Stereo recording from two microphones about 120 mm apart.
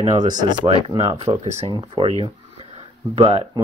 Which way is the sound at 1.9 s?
55° right (ahead or behind).